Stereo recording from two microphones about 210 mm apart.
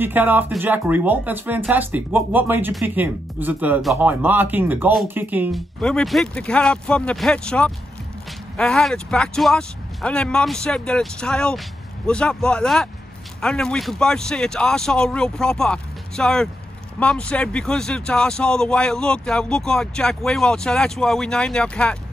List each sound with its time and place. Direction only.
0.0 s speech: 10° right (ahead or behind)
5.8 s speech: 5° left (ahead or behind)